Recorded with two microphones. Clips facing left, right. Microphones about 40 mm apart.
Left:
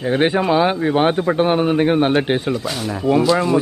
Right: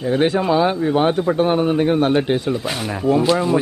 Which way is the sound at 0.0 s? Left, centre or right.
Left.